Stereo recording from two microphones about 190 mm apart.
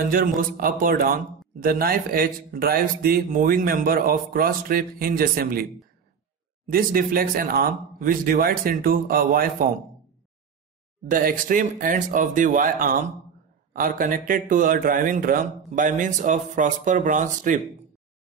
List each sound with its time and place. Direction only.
0.1 s speech: 50° right (ahead or behind)
6.7 s speech: 50° right (ahead or behind)
11.1 s speech: 45° right (ahead or behind)